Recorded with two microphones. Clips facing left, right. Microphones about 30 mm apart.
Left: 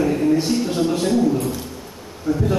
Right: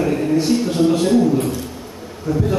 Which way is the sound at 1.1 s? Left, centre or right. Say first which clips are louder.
Right 3 dB; right.